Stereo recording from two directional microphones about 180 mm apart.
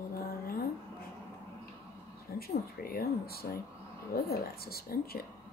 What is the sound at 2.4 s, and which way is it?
Speech, 55° left (ahead or behind).